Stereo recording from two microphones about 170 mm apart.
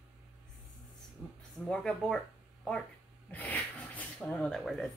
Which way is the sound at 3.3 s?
10° left (ahead or behind).